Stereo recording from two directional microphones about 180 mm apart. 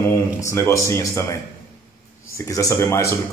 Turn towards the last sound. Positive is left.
turn(degrees=15)  # may be behind; listen again after turning